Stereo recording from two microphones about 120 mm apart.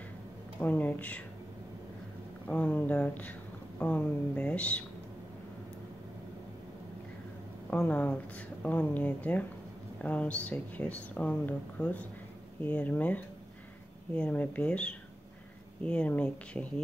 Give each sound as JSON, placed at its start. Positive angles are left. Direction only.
{"t": 0.6, "sound": "speech", "side_deg": 15}
{"t": 2.4, "sound": "speech", "side_deg": 15}
{"t": 7.7, "sound": "speech", "side_deg": 15}